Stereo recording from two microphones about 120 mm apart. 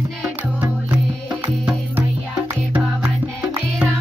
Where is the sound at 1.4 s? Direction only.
15° right (ahead or behind).